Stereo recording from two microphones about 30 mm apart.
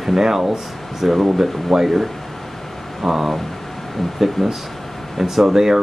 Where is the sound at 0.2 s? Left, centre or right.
Centre.